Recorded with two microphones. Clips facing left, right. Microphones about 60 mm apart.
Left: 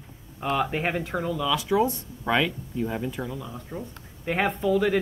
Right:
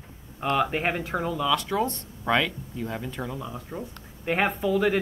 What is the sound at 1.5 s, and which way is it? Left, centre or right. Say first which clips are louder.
Speech: left 2 dB; centre.